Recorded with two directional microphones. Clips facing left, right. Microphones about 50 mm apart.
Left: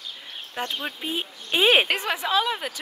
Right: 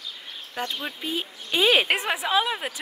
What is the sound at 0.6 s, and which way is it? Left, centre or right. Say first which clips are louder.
Speech: left 1 dB; left.